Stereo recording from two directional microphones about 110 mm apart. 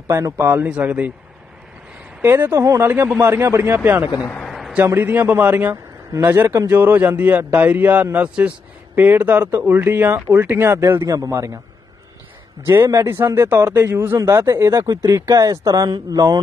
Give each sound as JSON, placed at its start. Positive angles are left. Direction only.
{"t": 0.1, "sound": "speech", "side_deg": -25}
{"t": 2.2, "sound": "speech", "side_deg": -20}
{"t": 4.5, "sound": "a sound", "side_deg": 0}
{"t": 4.7, "sound": "speech", "side_deg": -20}
{"t": 12.6, "sound": "speech", "side_deg": -25}